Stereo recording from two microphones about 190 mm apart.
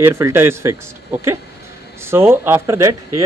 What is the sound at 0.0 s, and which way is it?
Speech, 15° right (ahead or behind).